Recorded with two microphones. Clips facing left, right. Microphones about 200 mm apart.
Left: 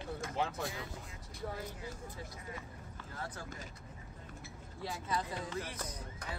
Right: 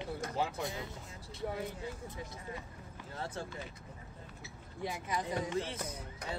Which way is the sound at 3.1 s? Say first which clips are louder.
Right 4 dB; 25° right (ahead or behind).